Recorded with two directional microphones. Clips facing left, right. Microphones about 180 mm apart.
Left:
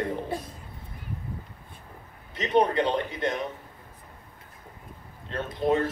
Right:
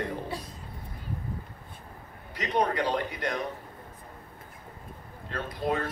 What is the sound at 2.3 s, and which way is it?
A man's voice, 25° left (ahead or behind).